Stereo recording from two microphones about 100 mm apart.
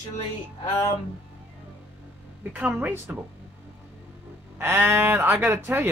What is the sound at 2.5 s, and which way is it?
Speech, 15° right (ahead or behind).